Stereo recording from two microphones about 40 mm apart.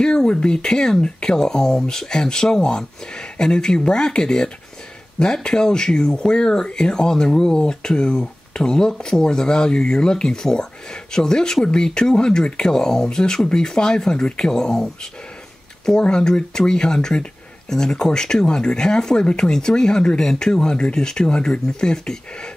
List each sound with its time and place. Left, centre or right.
0.0 s speech: left
16.0 s speech: centre